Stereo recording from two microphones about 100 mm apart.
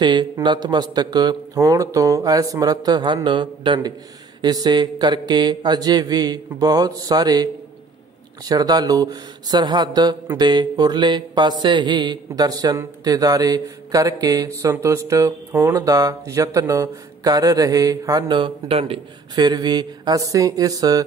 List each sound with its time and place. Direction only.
0.0 s speech: 50° right (ahead or behind)
3.3 s a sound: 50° right (ahead or behind)
8.5 s speech: 40° right (ahead or behind)
10.3 s a sound: 45° right (ahead or behind)
13.0 s speech: 40° right (ahead or behind)
18.3 s speech: 60° right (ahead or behind)
19.3 s speech: 45° right (ahead or behind)